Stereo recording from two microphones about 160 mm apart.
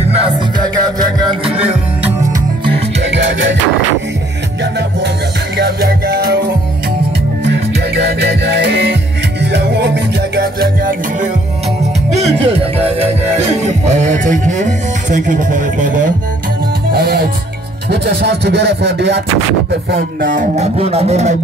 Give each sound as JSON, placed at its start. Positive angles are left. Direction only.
{"t": 0.7, "sound": "music", "side_deg": -25}
{"t": 1.5, "sound": "music", "side_deg": -40}
{"t": 3.1, "sound": "music", "side_deg": -90}
{"t": 5.6, "sound": "music", "side_deg": -75}
{"t": 7.4, "sound": "music", "side_deg": -90}
{"t": 12.1, "sound": "music", "side_deg": -45}
{"t": 16.9, "sound": "music", "side_deg": -75}
{"t": 17.8, "sound": "a sound", "side_deg": -90}
{"t": 19.7, "sound": "speech", "side_deg": -65}